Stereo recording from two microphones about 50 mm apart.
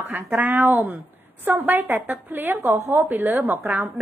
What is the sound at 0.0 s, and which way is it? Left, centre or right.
A woman's voice, right.